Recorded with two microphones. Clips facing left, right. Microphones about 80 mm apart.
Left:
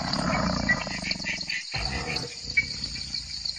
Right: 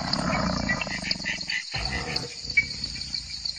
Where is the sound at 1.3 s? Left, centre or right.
Right.